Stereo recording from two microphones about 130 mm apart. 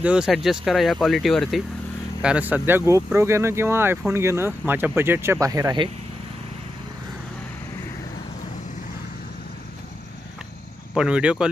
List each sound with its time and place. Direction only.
0.0 s speech: 5° right (ahead or behind)
2.2 s speech: 10° right (ahead or behind); by 5.9 s 30° right (ahead or behind)
11.0 s speech: 10° right (ahead or behind)